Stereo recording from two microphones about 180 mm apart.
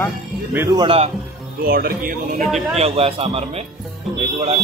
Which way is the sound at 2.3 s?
40° right (ahead or behind).